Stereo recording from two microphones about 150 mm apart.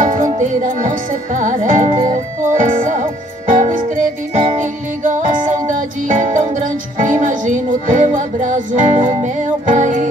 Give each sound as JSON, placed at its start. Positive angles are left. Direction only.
{"t": 0.0, "sound": "music", "side_deg": -55}